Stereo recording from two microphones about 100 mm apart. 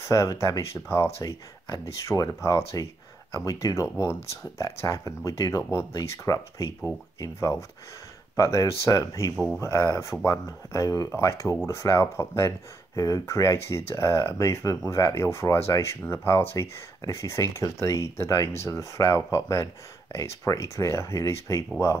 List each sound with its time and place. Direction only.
0.0 s speech: 30° left (ahead or behind)